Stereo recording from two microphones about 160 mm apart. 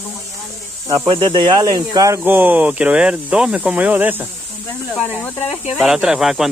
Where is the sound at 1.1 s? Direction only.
35° right (ahead or behind).